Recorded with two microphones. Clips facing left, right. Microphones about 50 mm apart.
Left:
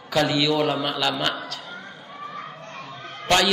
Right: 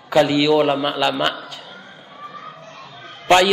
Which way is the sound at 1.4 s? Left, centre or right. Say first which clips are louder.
Left 1 dB; right.